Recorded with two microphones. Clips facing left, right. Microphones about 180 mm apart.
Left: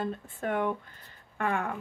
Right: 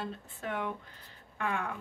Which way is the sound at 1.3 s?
50° left (ahead or behind).